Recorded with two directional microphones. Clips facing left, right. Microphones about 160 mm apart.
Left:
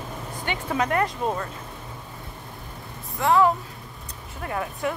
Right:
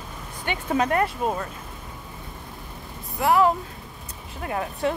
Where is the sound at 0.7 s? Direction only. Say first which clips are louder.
Right 2 dB; 25° right (ahead or behind).